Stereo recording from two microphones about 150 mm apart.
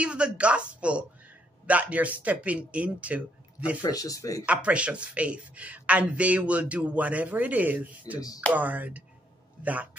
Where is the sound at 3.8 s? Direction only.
25° left (ahead or behind).